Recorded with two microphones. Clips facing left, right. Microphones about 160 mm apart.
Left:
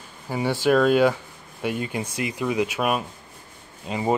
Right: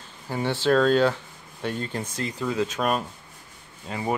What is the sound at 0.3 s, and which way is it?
Speech, 10° left (ahead or behind).